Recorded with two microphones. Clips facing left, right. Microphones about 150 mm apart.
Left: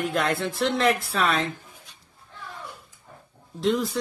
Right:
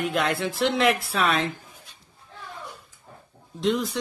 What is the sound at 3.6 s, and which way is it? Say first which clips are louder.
Speech: left 1 dB; centre (ahead or behind).